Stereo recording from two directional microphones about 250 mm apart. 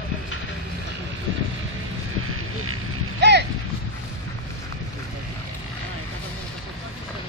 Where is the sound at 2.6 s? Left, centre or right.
Right.